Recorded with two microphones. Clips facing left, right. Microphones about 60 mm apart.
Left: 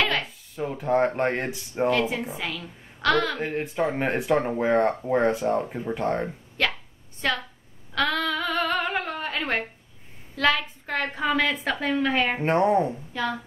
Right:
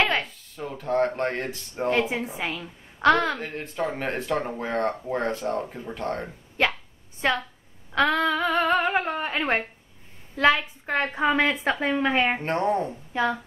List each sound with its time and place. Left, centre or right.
0.2 s speech: centre
1.9 s a woman's voice: centre
3.3 s speech: centre
6.6 s hiccup: centre
7.2 s a woman's voice: right
12.4 s speech: centre
13.1 s a woman's voice: right